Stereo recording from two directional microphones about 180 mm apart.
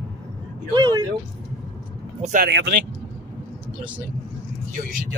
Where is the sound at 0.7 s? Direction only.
25° right (ahead or behind).